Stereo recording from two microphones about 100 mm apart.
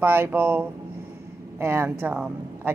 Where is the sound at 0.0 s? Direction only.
20° right (ahead or behind).